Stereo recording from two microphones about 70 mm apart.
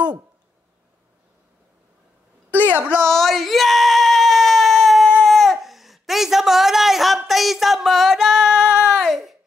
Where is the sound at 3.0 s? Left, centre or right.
Centre.